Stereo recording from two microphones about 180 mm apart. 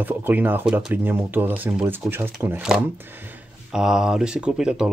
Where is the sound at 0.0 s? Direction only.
10° right (ahead or behind).